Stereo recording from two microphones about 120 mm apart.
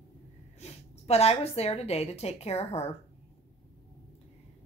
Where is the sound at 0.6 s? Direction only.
60° left (ahead or behind).